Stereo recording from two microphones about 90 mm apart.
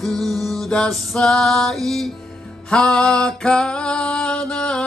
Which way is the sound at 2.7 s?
10° left (ahead or behind).